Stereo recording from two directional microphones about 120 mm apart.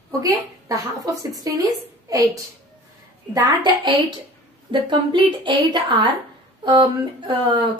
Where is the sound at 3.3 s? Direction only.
35° right (ahead or behind).